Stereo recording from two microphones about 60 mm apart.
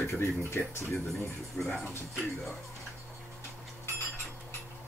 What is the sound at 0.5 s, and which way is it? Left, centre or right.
Speech, left.